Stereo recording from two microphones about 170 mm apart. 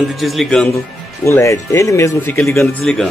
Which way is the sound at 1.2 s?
15° left (ahead or behind).